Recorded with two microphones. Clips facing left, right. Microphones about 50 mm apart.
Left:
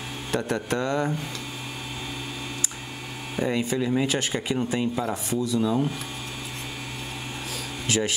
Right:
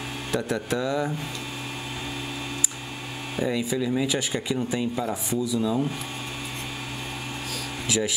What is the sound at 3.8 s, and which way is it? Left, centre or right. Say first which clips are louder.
Speech: left 2 dB; centre.